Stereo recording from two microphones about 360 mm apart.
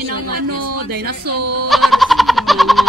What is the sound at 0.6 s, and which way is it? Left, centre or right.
Speech, right.